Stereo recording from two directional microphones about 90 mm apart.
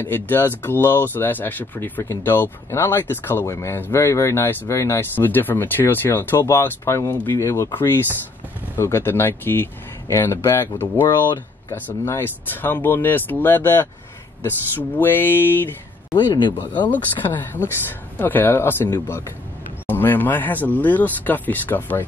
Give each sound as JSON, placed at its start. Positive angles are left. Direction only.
{"t": 0.0, "sound": "speech", "side_deg": 25}
{"t": 7.7, "sound": "speech", "side_deg": 25}
{"t": 16.1, "sound": "speech", "side_deg": 60}
{"t": 16.9, "sound": "speech", "side_deg": 20}
{"t": 19.9, "sound": "speech", "side_deg": 20}